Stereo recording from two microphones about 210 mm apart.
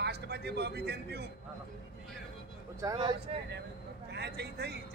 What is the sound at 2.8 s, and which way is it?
Speech, 20° right (ahead or behind).